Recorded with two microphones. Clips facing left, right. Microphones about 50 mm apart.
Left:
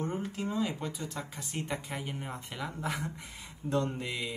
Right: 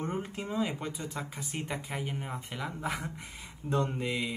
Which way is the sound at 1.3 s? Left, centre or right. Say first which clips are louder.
Even; centre.